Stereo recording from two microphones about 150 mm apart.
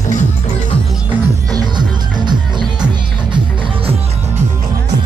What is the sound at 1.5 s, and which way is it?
Music, 30° right (ahead or behind).